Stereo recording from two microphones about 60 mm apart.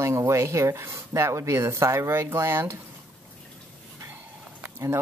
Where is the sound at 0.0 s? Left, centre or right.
Right.